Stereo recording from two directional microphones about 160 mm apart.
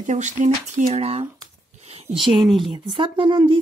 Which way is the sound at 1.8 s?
40° right (ahead or behind).